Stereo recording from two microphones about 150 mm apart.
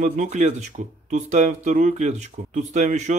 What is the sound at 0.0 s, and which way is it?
Speech, 55° right (ahead or behind).